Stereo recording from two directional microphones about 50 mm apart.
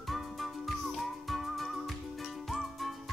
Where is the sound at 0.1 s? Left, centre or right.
Centre.